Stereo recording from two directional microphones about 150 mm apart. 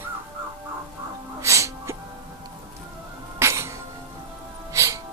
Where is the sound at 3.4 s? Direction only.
20° right (ahead or behind).